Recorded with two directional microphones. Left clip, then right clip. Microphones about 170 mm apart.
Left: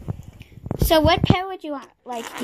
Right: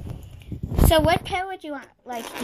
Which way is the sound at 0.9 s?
15° left (ahead or behind).